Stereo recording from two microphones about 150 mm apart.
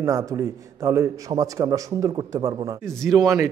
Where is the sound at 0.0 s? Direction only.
20° right (ahead or behind).